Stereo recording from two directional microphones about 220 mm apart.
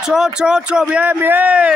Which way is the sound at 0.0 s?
Centre (ahead or behind).